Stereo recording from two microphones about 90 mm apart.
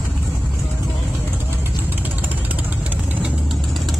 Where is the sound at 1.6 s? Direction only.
20° right (ahead or behind).